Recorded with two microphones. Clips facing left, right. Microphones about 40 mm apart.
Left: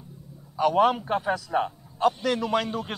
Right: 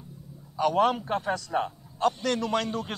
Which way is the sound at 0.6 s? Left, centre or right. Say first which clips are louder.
Left 2 dB; centre.